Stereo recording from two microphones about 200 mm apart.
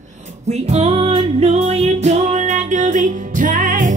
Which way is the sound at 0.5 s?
35° right (ahead or behind).